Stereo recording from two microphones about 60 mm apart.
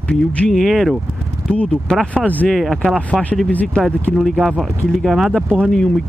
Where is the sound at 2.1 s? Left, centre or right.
Left.